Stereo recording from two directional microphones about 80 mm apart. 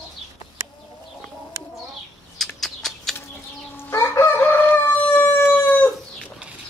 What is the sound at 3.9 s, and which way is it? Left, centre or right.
Chicken, left.